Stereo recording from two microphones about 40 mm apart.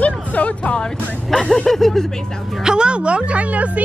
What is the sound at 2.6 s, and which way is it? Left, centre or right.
A woman's voice, right.